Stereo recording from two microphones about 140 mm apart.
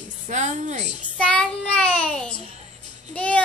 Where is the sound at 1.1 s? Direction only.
10° left (ahead or behind).